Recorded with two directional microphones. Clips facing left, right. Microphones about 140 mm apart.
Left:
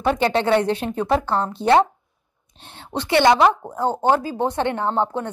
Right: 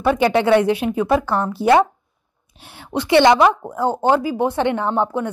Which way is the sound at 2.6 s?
10° right (ahead or behind).